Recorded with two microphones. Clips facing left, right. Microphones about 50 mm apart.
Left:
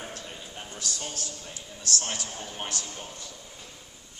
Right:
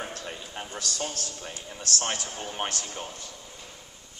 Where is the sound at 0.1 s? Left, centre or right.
Right.